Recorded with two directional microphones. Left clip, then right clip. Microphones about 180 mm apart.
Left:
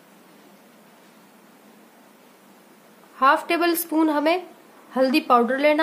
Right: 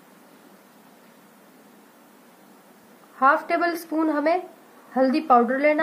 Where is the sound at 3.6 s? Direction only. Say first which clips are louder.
Left 3 dB; 20° left (ahead or behind).